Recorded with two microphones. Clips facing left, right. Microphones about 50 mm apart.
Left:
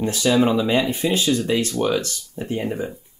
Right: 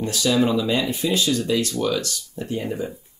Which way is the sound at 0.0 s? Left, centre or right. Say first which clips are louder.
Left 2 dB; left.